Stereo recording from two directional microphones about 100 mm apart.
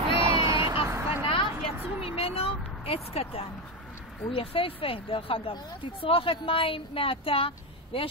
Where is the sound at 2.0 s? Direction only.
75° left (ahead or behind).